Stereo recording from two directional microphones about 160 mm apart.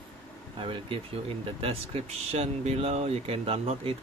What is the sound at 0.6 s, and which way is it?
Speech, 35° right (ahead or behind).